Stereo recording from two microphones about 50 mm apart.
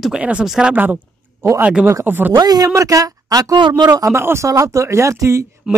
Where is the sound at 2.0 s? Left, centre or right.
Right.